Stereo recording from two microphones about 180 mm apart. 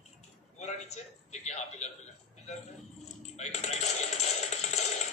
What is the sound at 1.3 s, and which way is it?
Speech, 40° left (ahead or behind).